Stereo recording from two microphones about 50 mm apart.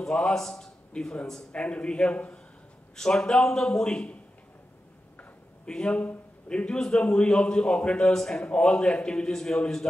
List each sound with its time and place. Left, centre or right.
0.0 s a man's voice: centre
1.5 s a man's voice: left
3.0 s a man's voice: centre
5.7 s a man's voice: centre